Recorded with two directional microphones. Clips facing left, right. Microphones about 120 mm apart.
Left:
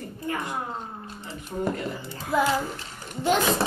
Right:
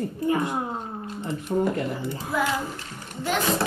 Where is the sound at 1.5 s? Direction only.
30° right (ahead or behind).